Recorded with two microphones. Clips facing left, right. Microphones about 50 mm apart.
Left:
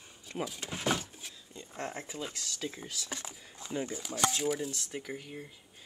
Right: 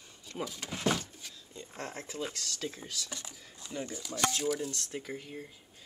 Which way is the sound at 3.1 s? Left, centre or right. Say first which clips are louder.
Left 3 dB; left.